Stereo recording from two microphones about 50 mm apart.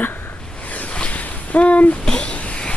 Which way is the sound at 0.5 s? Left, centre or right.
Left.